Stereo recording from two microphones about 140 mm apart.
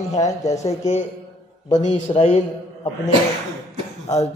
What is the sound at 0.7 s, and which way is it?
A man's voice, 55° left (ahead or behind).